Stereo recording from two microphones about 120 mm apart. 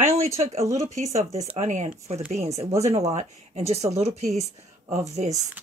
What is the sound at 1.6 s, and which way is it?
Speech, 75° right (ahead or behind).